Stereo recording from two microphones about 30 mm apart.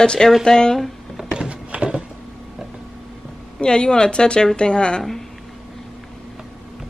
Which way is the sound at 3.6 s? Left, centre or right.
Left.